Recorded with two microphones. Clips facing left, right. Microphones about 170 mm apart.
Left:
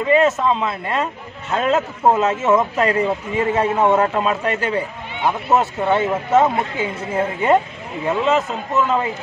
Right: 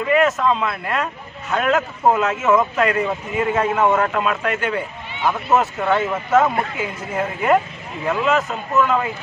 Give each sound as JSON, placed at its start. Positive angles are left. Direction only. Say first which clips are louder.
{"t": 0.1, "sound": "a man's voice", "louder": "left 1 dB", "side_deg": 25}